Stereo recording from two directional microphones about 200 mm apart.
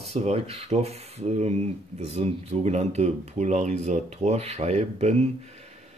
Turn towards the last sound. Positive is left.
turn(degrees=-35)  # may be behind; listen again after turning